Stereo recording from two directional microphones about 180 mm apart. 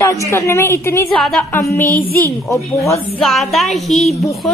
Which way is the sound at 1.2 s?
5° left (ahead or behind).